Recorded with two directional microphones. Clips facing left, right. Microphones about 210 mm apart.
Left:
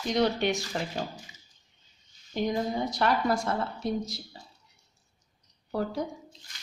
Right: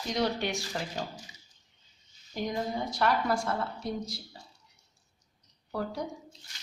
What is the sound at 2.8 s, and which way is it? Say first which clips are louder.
Speech: even; 20° left (ahead or behind).